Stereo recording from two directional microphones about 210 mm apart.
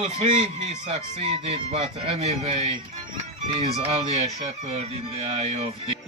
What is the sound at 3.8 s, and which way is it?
Speech, 30° right (ahead or behind).